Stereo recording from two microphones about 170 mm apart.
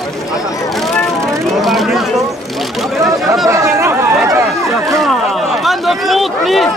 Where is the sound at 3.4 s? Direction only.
15° right (ahead or behind).